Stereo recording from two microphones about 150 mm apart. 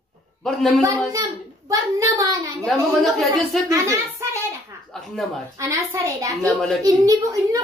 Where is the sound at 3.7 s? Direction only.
20° right (ahead or behind).